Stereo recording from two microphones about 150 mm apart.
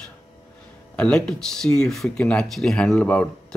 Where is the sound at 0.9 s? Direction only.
5° left (ahead or behind).